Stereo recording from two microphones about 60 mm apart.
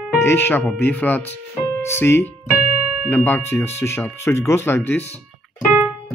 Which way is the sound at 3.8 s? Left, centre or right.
Left.